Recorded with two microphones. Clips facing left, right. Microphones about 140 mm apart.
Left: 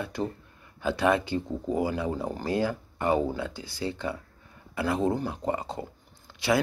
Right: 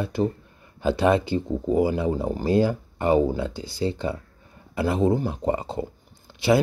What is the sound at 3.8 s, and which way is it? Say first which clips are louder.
Speech: right 5 dB; 30° right (ahead or behind).